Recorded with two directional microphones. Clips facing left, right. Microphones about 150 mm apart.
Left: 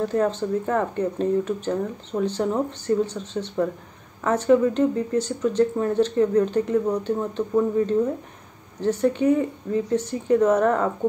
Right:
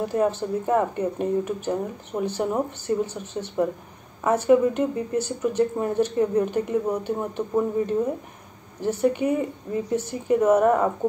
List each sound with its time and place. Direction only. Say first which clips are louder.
0.0 s speech: left 1 dB; 10° right (ahead or behind)